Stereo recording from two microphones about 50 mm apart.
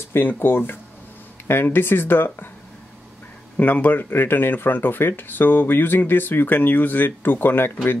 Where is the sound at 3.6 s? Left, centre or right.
Left.